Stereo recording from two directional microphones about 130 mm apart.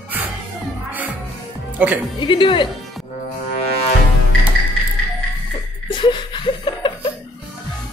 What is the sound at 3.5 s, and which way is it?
Music, 50° left (ahead or behind).